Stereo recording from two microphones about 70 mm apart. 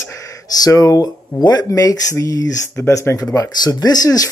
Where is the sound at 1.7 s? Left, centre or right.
Left.